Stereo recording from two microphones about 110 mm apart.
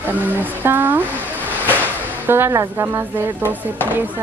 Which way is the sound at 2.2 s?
20° right (ahead or behind).